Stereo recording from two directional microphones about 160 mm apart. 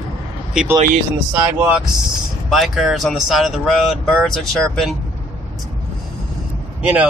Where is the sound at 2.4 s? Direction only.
Centre (ahead or behind).